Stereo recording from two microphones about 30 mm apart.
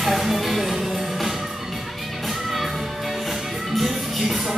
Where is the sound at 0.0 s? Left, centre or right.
Centre.